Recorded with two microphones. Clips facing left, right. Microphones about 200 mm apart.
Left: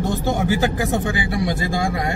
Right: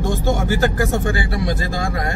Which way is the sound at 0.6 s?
15° left (ahead or behind).